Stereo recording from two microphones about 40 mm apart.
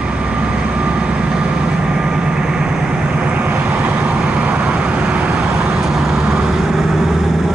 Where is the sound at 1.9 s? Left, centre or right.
Centre.